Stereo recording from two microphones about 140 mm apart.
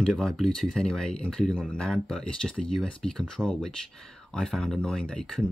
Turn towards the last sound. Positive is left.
turn(degrees=5)  # may be behind; listen again after turning